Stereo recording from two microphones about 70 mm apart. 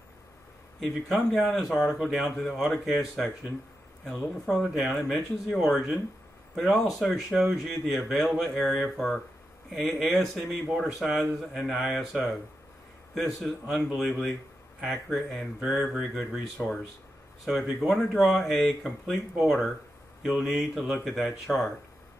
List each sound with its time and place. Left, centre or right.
0.7 s speech: centre
16.5 s speech: centre
17.5 s speech: centre